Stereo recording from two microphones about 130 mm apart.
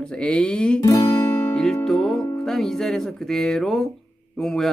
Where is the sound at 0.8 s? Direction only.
25° left (ahead or behind).